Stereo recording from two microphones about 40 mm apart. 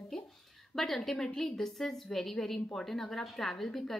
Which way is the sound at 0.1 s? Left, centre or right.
Centre.